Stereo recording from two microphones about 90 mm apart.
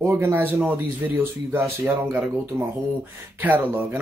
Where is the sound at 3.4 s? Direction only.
20° right (ahead or behind).